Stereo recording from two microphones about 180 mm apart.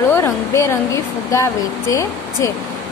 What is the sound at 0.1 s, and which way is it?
A woman's voice, 15° left (ahead or behind).